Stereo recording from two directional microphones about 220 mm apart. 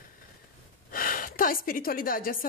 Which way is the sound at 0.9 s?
40° left (ahead or behind).